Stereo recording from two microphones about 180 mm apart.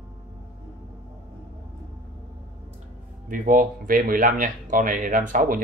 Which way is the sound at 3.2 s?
50° right (ahead or behind).